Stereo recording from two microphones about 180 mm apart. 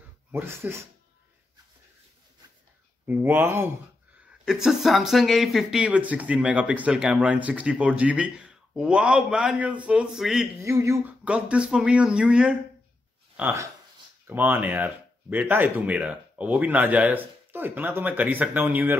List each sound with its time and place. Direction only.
0.3 s speech: 15° right (ahead or behind)
3.1 s speech: 10° right (ahead or behind)
4.5 s speech: centre (ahead or behind)
10.6 s speech: 15° right (ahead or behind)
11.2 s speech: 5° right (ahead or behind)